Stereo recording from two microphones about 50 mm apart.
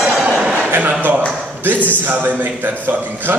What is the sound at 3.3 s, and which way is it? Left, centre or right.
Speech, right.